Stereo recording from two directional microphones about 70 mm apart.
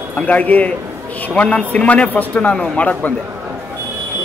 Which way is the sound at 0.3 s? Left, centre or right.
Left.